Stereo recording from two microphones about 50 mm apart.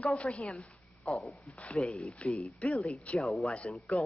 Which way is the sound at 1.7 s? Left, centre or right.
Centre.